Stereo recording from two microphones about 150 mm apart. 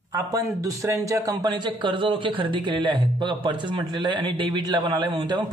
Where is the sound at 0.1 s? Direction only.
20° right (ahead or behind).